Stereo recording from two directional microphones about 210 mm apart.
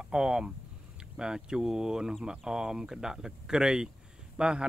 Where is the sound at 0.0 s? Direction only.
5° right (ahead or behind).